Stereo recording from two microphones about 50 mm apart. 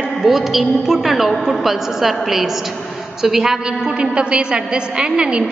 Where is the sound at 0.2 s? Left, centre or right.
Centre.